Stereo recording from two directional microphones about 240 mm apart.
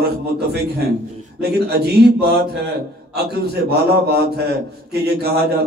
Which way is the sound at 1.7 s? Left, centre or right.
Right.